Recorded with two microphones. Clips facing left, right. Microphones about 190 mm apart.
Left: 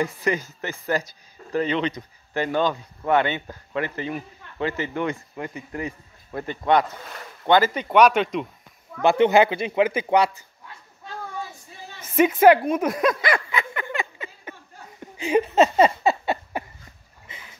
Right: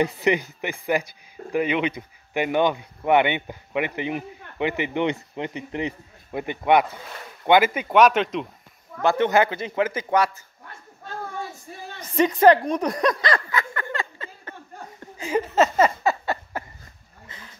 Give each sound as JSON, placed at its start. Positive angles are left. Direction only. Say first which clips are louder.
{"t": 0.0, "sound": "a man's voice", "louder": "right 3 dB", "side_deg": -20}
{"t": 9.0, "sound": "a man's voice", "louder": "left 3 dB", "side_deg": 15}
{"t": 12.0, "sound": "a sound", "louder": "left 1 dB", "side_deg": 5}